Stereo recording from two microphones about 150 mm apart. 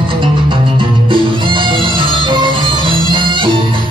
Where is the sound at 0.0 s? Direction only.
35° right (ahead or behind).